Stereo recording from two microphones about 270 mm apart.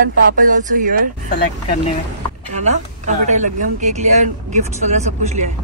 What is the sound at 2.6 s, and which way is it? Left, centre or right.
A woman's voice, right.